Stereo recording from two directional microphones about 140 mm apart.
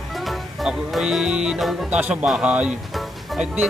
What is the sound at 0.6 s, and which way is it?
Speech, 5° right (ahead or behind).